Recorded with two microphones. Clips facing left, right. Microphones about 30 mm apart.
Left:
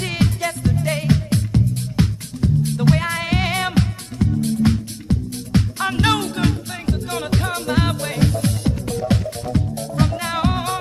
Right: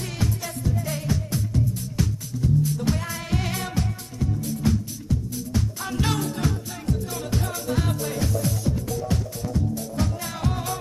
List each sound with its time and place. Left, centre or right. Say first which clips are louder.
0.0 s music: left 8 dB; left